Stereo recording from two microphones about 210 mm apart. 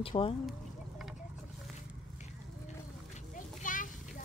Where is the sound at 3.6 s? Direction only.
40° left (ahead or behind).